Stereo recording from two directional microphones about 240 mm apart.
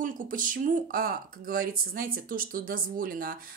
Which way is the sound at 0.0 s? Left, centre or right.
Right.